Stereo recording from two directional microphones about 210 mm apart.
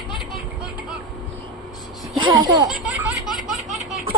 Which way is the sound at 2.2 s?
20° right (ahead or behind).